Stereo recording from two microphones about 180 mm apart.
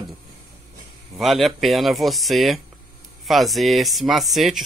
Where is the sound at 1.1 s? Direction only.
Centre (ahead or behind).